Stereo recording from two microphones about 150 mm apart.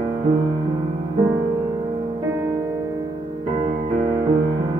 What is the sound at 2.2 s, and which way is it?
Music, 15° right (ahead or behind).